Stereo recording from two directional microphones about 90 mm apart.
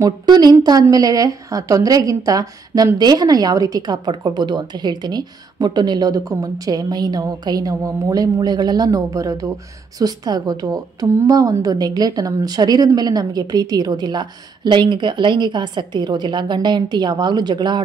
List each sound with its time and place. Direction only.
0.0 s a woman's voice: 50° right (ahead or behind)